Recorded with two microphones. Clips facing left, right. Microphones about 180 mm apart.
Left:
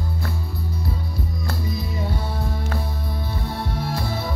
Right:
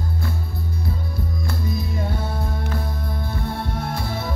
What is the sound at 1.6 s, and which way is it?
Music, 50° right (ahead or behind).